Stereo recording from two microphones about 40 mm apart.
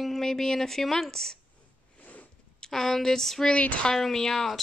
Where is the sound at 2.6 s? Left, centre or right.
Centre.